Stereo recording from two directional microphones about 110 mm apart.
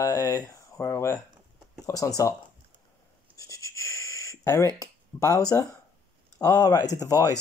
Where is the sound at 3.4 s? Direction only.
30° left (ahead or behind).